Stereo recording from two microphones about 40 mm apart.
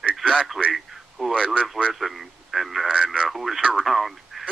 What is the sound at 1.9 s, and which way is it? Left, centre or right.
Speech, centre.